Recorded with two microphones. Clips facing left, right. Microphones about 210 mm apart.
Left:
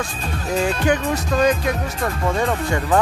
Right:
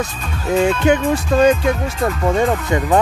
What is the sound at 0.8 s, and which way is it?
Speech, 30° right (ahead or behind).